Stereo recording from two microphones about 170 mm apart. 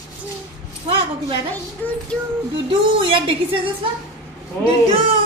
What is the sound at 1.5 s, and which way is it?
Speech, 10° left (ahead or behind).